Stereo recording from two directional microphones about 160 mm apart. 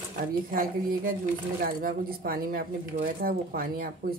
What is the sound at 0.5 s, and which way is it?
Speech, 65° right (ahead or behind).